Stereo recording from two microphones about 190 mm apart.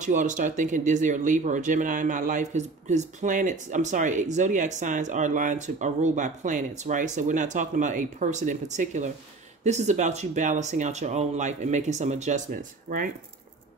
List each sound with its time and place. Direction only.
0.0 s speech: 40° right (ahead or behind)